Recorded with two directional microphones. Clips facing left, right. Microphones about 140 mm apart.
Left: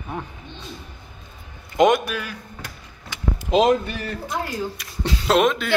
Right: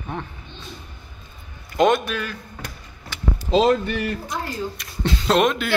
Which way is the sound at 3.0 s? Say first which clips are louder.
Even; 15° left (ahead or behind).